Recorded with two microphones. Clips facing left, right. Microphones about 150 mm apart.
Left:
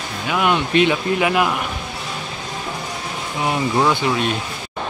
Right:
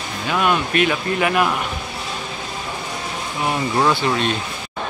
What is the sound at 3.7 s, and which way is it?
Speech, 5° left (ahead or behind).